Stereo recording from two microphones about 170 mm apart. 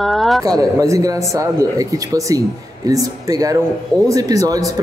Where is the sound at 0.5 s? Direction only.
20° right (ahead or behind).